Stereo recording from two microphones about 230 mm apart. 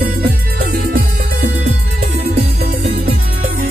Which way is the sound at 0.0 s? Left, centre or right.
Right.